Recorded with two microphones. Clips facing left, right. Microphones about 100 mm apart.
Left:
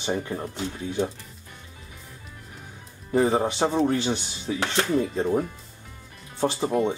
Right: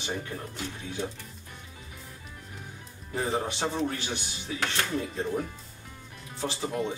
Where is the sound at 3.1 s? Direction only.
40° left (ahead or behind).